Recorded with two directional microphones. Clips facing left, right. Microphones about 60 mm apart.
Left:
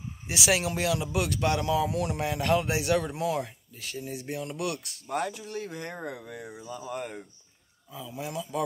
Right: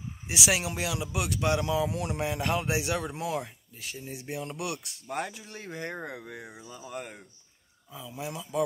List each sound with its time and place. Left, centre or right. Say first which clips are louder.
0.3 s speech: left 2 dB; centre
6.7 s speech: left 5 dB; centre